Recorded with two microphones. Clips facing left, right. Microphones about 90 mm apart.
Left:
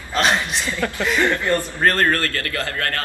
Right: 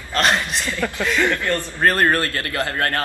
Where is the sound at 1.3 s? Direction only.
20° left (ahead or behind).